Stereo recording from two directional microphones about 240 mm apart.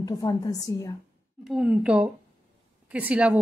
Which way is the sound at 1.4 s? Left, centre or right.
Centre.